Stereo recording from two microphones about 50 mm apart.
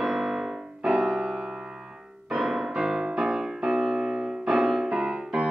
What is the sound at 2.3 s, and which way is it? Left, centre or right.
Music, centre.